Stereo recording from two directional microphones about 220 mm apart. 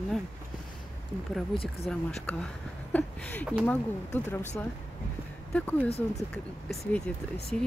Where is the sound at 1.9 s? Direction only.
5° left (ahead or behind).